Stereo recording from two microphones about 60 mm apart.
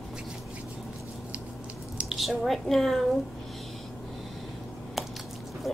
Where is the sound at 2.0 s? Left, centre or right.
Centre.